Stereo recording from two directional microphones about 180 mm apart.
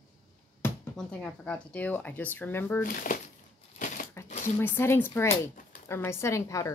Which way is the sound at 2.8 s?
50° left (ahead or behind).